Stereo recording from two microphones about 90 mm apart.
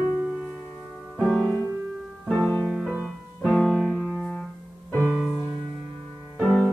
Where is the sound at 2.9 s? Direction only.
15° right (ahead or behind).